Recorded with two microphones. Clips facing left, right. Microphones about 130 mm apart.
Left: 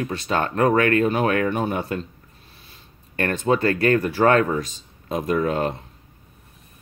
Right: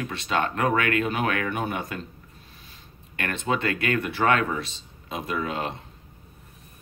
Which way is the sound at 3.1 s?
40° left (ahead or behind).